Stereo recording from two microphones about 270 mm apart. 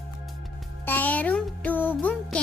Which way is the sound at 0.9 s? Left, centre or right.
Centre.